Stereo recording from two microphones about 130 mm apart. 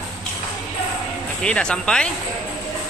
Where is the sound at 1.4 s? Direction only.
5° left (ahead or behind).